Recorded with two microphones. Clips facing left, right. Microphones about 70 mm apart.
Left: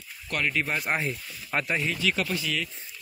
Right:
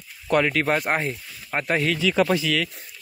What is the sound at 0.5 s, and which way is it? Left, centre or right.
Speech, right.